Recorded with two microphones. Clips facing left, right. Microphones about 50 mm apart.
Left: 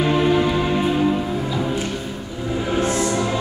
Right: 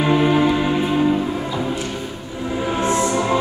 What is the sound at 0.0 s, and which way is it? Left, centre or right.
Music, centre.